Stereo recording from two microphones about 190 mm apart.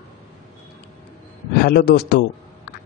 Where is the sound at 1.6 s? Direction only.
55° left (ahead or behind).